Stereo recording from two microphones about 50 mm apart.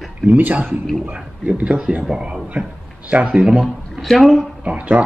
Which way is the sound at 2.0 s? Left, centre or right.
Centre.